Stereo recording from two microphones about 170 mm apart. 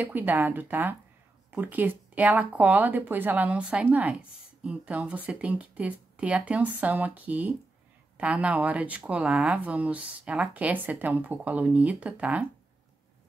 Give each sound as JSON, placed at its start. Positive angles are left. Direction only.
{"t": 0.0, "sound": "speech", "side_deg": -10}